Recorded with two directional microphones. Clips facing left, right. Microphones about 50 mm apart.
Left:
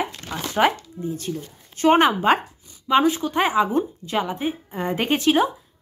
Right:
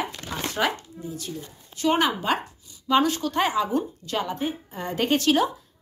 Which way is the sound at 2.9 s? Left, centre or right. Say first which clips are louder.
Left 3 dB; centre.